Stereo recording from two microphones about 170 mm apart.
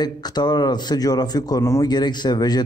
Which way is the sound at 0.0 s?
25° left (ahead or behind).